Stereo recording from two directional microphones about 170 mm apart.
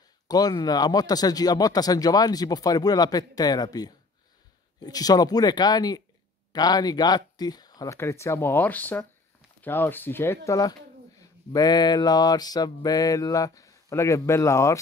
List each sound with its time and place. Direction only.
0.3 s speech: 25° left (ahead or behind)